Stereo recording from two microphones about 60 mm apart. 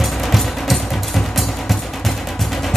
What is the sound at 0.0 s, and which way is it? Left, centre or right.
Music, centre.